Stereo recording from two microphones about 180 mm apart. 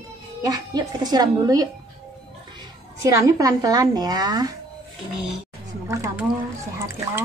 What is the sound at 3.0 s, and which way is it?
A woman's voice, 20° right (ahead or behind).